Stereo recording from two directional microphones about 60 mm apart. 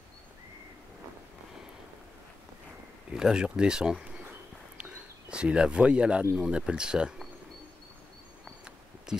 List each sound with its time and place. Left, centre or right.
3.1 s speech: centre
4.7 s a sound: centre
6.3 s speech: centre